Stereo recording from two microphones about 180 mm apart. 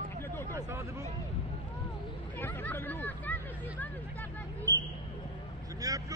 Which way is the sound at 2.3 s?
10° left (ahead or behind).